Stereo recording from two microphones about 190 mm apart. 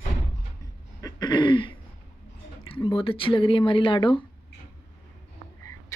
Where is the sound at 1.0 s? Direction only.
25° left (ahead or behind).